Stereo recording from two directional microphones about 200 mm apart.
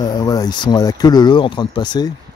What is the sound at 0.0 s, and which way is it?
Speech, 20° left (ahead or behind).